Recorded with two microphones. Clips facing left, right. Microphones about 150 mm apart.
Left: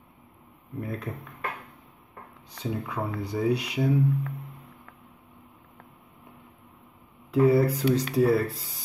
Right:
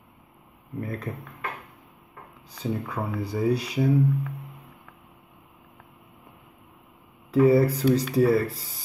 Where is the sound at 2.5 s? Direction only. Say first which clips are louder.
Right 2 dB; centre (ahead or behind).